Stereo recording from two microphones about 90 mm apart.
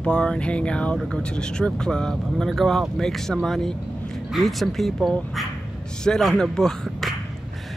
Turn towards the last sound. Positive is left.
turn(degrees=5)  # may be behind; listen again after turning